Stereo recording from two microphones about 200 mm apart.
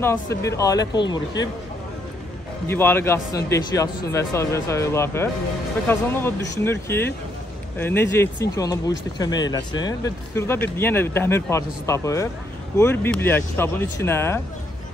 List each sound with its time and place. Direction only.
0.0 s speech: 15° left (ahead or behind)
2.7 s speech: 10° left (ahead or behind)